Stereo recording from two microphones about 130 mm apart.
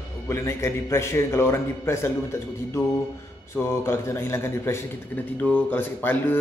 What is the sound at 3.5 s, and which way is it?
A man's voice, 20° left (ahead or behind).